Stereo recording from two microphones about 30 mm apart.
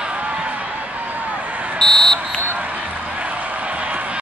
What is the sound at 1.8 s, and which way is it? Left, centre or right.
Buzzer, centre.